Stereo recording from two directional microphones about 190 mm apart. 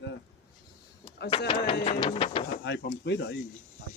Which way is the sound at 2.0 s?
30° left (ahead or behind).